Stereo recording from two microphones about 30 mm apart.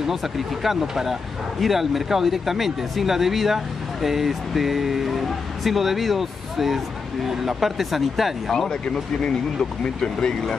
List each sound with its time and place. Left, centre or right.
0.0 s speech: centre
9.2 s speech: left